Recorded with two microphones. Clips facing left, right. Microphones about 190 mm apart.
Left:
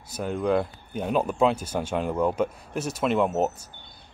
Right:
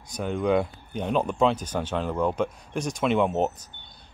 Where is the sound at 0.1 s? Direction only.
5° left (ahead or behind).